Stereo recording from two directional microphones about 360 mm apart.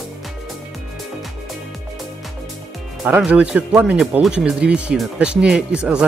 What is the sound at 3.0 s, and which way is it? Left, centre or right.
Speech, centre.